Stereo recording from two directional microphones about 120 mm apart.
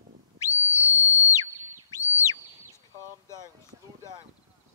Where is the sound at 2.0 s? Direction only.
25° left (ahead or behind).